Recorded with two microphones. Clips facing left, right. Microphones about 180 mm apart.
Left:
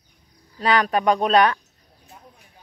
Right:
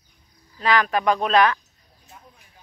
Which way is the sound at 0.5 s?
35° left (ahead or behind).